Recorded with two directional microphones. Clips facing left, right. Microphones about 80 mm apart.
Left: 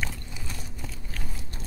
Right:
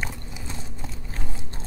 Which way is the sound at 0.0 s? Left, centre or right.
Right.